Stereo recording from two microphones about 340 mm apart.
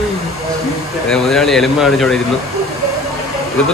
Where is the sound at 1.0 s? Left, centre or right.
Centre.